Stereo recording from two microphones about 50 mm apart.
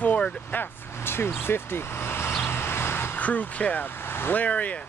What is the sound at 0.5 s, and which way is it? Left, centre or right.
Speech, left.